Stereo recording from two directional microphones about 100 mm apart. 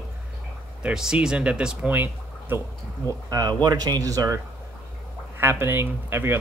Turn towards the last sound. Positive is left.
turn(degrees=-20)  # may be behind; listen again after turning